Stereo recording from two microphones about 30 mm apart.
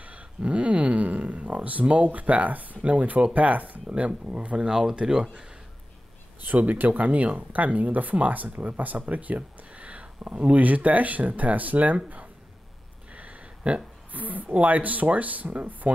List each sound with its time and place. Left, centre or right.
0.0 s a sound: right
0.5 s speech: right
2.5 s speech: right
2.8 s speech: right
4.3 s speech: right
4.6 s speech: right
6.4 s speech: right
13.1 s a sound: right
14.1 s speech: right